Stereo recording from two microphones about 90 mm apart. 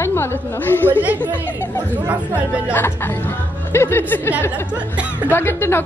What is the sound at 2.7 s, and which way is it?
A woman's voice, 25° left (ahead or behind).